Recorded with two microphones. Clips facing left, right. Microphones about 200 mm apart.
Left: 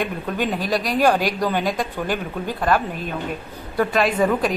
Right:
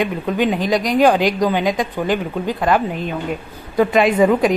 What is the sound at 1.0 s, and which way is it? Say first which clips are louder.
A woman's voice: right 4 dB; 15° right (ahead or behind).